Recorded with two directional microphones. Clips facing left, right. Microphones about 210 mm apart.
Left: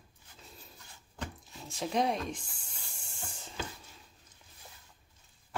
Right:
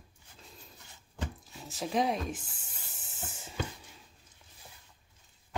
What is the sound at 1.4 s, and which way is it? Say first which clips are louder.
Speech: even; centre (ahead or behind).